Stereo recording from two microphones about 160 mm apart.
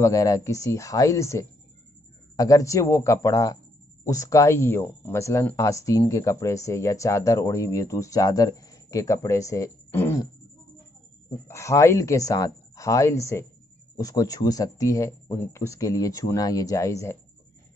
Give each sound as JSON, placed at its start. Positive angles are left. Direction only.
{"t": 0.0, "sound": "speech", "side_deg": 20}
{"t": 11.4, "sound": "speech", "side_deg": 20}